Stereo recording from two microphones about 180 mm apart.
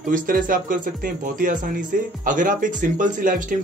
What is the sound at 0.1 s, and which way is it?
Speech, 50° right (ahead or behind).